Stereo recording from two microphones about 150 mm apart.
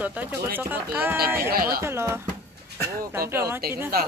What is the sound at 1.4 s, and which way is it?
Speech, 80° right.